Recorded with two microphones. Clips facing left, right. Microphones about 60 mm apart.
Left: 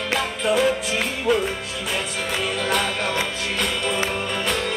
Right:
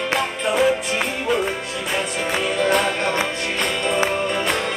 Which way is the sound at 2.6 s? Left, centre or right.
Centre.